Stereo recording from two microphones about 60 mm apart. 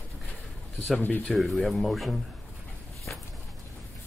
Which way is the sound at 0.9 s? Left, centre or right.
Left.